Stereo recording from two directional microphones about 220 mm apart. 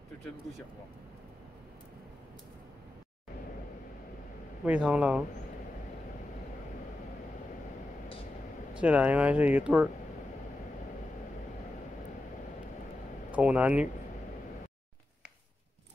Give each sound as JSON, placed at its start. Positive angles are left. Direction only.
{"t": 4.6, "sound": "speech", "side_deg": -5}
{"t": 8.8, "sound": "speech", "side_deg": -5}
{"t": 13.3, "sound": "speech", "side_deg": -5}